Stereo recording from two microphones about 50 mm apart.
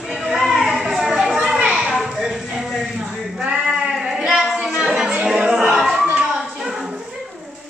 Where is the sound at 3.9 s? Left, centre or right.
Centre.